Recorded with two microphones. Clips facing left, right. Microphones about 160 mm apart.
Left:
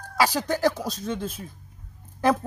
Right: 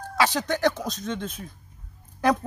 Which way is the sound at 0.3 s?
35° left (ahead or behind).